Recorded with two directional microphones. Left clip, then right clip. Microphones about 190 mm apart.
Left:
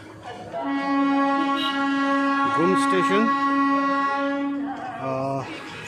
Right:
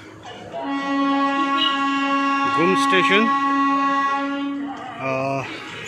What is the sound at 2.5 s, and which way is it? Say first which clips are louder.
Speech: right 5 dB; centre (ahead or behind).